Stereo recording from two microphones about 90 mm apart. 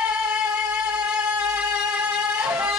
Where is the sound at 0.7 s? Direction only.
15° right (ahead or behind).